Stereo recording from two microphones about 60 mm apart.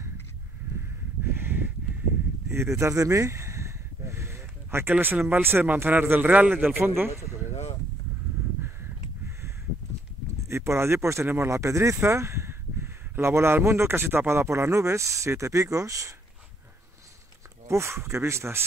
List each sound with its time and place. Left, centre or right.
1.2 s a sound: right
2.5 s a sound: right
4.9 s speech: right
6.8 s speech: right
10.5 s speech: right
17.6 s speech: right